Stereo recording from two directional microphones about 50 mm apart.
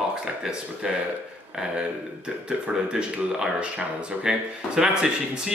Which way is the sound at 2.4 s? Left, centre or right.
Centre.